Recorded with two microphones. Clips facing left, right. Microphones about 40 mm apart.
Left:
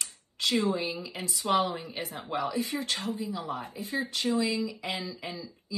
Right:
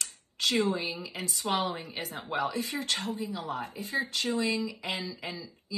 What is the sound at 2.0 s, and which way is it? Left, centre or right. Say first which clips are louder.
A woman's voice: right 1 dB; right.